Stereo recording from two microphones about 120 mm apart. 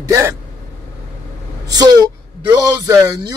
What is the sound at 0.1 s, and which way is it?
Speech, 25° right (ahead or behind).